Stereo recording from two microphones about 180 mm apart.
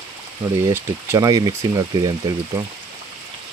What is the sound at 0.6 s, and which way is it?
Speech, 15° right (ahead or behind).